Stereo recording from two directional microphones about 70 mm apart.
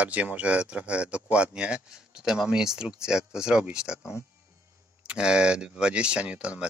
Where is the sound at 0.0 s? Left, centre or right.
Right.